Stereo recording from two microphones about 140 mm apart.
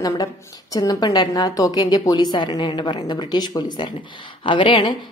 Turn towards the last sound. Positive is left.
turn(degrees=35)  # may be behind; listen again after turning